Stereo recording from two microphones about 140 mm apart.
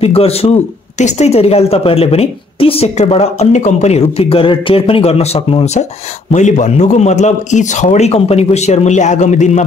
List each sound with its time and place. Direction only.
0.0 s speech: 45° left (ahead or behind)
6.3 s speech: 60° left (ahead or behind)